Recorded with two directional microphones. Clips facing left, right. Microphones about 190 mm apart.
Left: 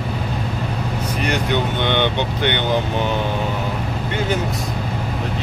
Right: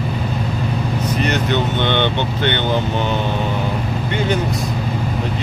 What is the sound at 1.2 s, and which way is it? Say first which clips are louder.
Speech: even; 10° left (ahead or behind).